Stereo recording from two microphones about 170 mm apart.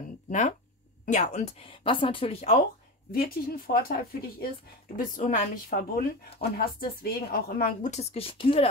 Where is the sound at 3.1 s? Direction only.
60° left (ahead or behind).